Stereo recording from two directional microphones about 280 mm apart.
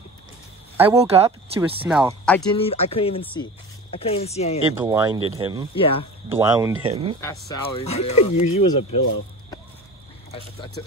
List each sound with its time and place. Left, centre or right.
0.7 s speech: centre
1.0 s speech: right
1.8 s speech: centre
2.5 s speech: centre
4.7 s speech: centre
5.8 s speech: centre
6.2 s speech: centre
7.2 s speech: centre